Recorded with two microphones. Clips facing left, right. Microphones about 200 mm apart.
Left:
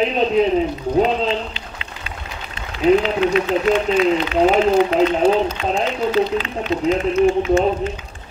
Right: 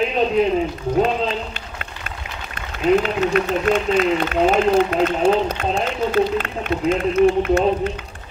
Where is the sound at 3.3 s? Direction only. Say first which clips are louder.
Even; 50° right (ahead or behind).